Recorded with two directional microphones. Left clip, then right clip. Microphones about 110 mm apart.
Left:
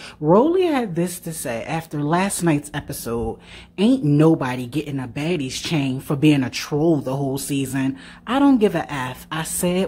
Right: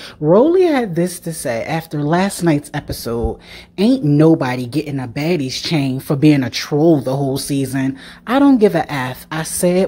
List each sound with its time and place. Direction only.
0.2 s speech: 20° right (ahead or behind)